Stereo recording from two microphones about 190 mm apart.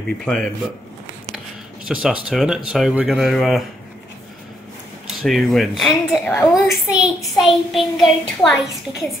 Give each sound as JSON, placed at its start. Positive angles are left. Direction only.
{"t": 0.2, "sound": "child singing", "side_deg": 0}
{"t": 1.9, "sound": "child singing", "side_deg": 0}
{"t": 5.2, "sound": "child singing", "side_deg": 0}